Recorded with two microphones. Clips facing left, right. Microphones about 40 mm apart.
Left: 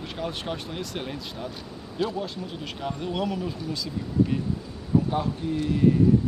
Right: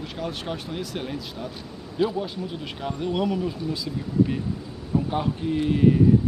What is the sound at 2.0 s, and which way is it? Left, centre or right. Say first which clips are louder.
Speech: right 4 dB; centre.